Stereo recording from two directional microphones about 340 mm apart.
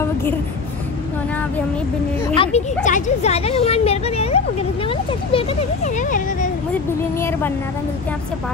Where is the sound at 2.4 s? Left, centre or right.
Centre.